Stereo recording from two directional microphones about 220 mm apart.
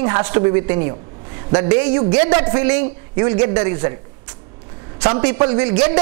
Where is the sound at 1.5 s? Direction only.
20° right (ahead or behind).